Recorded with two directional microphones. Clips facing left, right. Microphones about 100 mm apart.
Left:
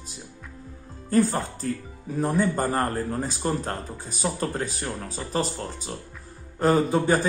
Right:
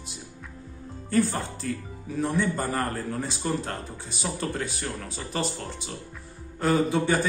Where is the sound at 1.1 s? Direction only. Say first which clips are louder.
Left 3 dB; 40° left (ahead or behind).